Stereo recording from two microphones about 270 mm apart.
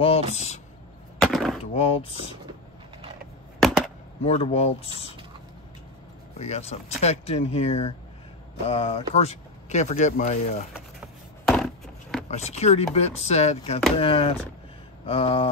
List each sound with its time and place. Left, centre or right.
0.0 s speech: left
1.2 s a sound: centre
1.6 s speech: left
4.2 s speech: left
6.3 s speech: left
11.4 s a sound: centre
12.3 s speech: left